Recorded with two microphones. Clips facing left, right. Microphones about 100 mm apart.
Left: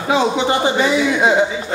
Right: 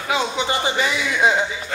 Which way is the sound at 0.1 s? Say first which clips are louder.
Left 6 dB; 20° left (ahead or behind).